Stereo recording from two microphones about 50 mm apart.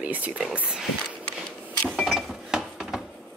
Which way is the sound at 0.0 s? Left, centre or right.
Right.